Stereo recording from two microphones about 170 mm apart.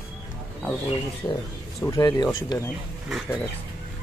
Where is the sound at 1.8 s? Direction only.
20° left (ahead or behind).